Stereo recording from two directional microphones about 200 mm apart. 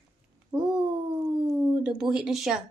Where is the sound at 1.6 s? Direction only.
10° right (ahead or behind).